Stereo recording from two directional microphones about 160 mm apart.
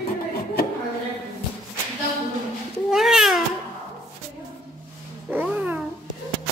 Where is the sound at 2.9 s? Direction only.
5° right (ahead or behind).